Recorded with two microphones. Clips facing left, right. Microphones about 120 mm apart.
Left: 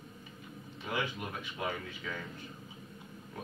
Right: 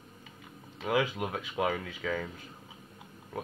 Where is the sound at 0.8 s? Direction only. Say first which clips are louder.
Right 7 dB; 90° right.